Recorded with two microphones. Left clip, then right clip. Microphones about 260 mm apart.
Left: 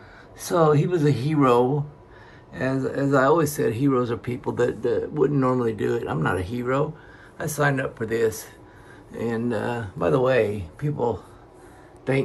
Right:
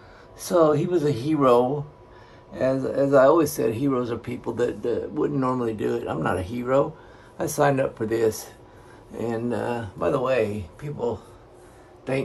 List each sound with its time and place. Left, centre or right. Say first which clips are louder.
0.4 s speech: even; centre